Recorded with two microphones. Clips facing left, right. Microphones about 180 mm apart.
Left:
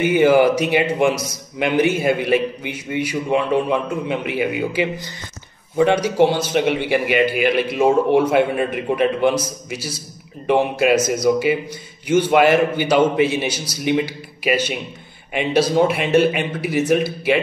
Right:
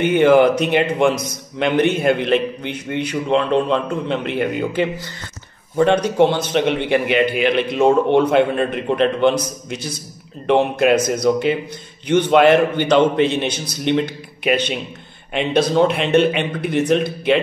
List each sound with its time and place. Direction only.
0.0 s a man's voice: 5° left (ahead or behind)